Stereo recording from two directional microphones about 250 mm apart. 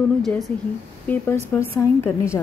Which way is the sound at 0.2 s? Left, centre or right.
Centre.